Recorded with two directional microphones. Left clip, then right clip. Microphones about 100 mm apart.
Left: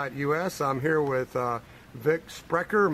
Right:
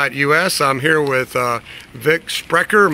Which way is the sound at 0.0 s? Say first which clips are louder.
Right 13 dB; 35° right (ahead or behind).